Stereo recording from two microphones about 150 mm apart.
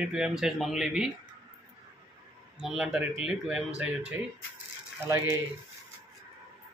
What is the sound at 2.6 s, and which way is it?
Speech, centre (ahead or behind).